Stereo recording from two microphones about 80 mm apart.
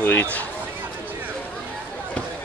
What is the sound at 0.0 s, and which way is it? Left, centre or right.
Speech, left.